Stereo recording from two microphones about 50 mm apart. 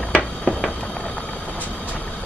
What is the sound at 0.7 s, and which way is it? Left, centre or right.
Music, centre.